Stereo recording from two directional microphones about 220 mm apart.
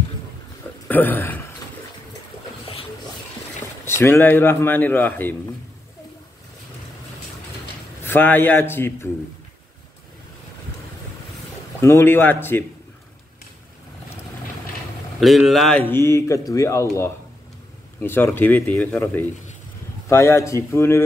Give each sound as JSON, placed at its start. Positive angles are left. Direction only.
{"t": 0.8, "sound": "speech", "side_deg": 10}
{"t": 2.6, "sound": "a sound", "side_deg": 25}
{"t": 3.8, "sound": "speech", "side_deg": 10}
{"t": 8.0, "sound": "speech", "side_deg": 10}
{"t": 11.8, "sound": "speech", "side_deg": 10}
{"t": 15.1, "sound": "speech", "side_deg": 0}